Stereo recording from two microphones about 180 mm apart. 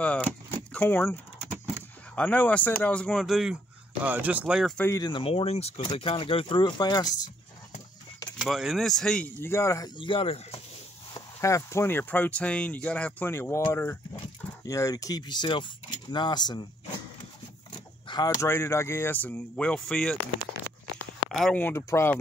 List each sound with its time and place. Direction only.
0.0 s speech: 5° left (ahead or behind)
2.1 s speech: 5° left (ahead or behind)
4.7 s speech: 15° left (ahead or behind)
8.4 s speech: centre (ahead or behind); by 9.8 s 15° left (ahead or behind)
9.9 s speech: 30° left (ahead or behind)
11.1 s speech: 15° left (ahead or behind)
17.7 s speech: 25° left (ahead or behind); by 20.2 s 5° left (ahead or behind)
21.3 s speech: centre (ahead or behind)